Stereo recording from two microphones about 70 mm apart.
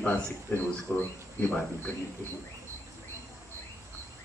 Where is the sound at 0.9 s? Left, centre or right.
Left.